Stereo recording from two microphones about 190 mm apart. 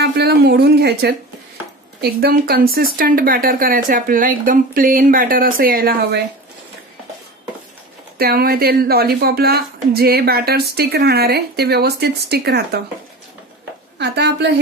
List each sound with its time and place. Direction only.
0.0 s speech: 60° right (ahead or behind)
8.2 s a woman's voice: 55° right (ahead or behind)
13.9 s a woman's voice: 65° right (ahead or behind)